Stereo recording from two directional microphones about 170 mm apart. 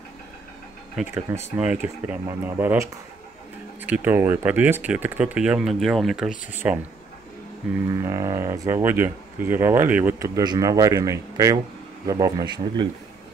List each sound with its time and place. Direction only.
1.0 s speech: centre (ahead or behind)
6.6 s speech: 15° right (ahead or behind)
7.9 s speech: 15° right (ahead or behind)